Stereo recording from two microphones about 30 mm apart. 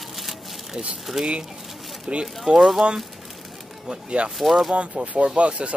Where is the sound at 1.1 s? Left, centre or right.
Centre.